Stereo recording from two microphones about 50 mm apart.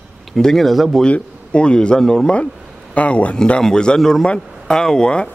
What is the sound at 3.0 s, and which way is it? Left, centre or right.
Speech, left.